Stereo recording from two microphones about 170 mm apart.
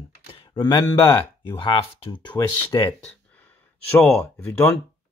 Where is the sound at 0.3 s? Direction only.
25° left (ahead or behind).